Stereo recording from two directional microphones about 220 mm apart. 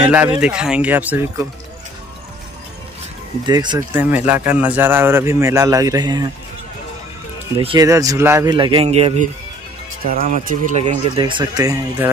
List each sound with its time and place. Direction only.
0.0 s a man's voice: 5° right (ahead or behind)
3.4 s speech: 20° right (ahead or behind)
4.5 s a man's voice: 5° right (ahead or behind)
7.5 s speech: 20° right (ahead or behind)